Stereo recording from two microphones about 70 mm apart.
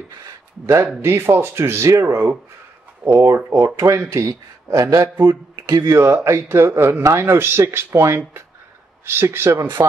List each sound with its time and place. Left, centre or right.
1.0 s a man's voice: right
5.1 s speech: right
9.8 s speech: right